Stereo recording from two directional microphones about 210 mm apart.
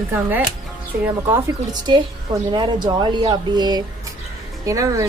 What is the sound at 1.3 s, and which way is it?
Speech, 20° right (ahead or behind).